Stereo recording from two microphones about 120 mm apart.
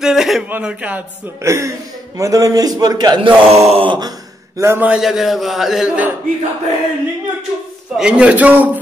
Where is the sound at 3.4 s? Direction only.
60° right (ahead or behind).